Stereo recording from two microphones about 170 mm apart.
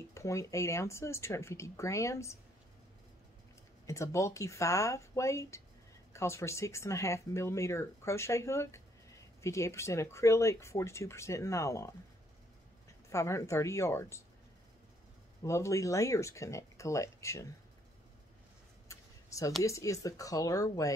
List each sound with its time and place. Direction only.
0.1 s speech: 15° left (ahead or behind)
3.8 s speech: 15° left (ahead or behind)
13.1 s speech: 15° left (ahead or behind)
15.4 s speech: 15° left (ahead or behind)
18.9 s a sound: 20° left (ahead or behind)
19.6 s speech: 20° left (ahead or behind)